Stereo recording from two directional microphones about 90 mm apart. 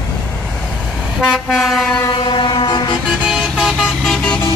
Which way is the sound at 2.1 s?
60° left (ahead or behind).